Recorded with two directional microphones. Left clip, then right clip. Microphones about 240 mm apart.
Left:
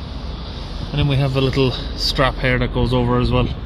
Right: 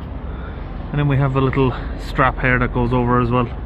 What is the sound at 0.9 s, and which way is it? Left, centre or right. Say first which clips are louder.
Speech: right 1 dB; centre.